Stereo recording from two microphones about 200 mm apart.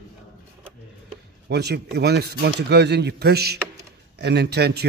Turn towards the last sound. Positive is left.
turn(degrees=-55)  # may be behind; listen again after turning